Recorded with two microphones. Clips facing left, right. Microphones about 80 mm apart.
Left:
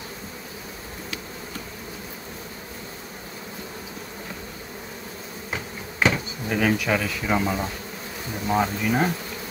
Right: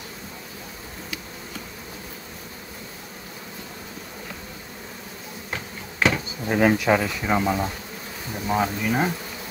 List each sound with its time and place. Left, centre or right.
5.5 s insect: centre
6.5 s bee: right
7.2 s bee: centre
8.5 s speech: centre